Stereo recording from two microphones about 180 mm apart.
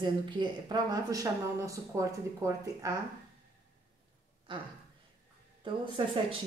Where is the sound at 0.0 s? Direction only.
25° right (ahead or behind).